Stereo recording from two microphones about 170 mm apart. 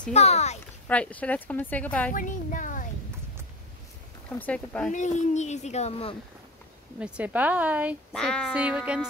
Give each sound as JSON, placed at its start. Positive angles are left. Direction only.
{"t": 0.1, "sound": "speech", "side_deg": 40}
{"t": 0.8, "sound": "speech", "side_deg": 10}
{"t": 2.1, "sound": "speech", "side_deg": 50}
{"t": 4.3, "sound": "speech", "side_deg": 10}
{"t": 4.9, "sound": "speech", "side_deg": 45}
{"t": 7.0, "sound": "a woman's voice", "side_deg": -5}
{"t": 8.1, "sound": "speech", "side_deg": 5}
{"t": 8.5, "sound": "a woman's voice", "side_deg": -5}